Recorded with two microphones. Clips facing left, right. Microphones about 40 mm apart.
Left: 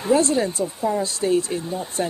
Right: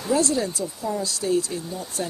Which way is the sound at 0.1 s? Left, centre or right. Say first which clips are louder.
Left 4 dB; left.